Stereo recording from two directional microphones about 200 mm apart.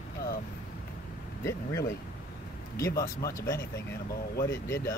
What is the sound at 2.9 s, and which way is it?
Speech, 15° left (ahead or behind).